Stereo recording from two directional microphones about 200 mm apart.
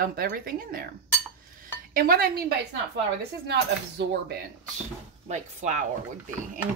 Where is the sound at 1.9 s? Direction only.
45° right (ahead or behind).